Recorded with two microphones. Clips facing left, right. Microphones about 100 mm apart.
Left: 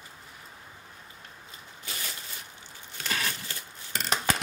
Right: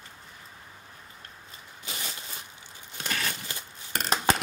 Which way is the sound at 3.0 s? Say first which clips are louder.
Even; 15° right (ahead or behind).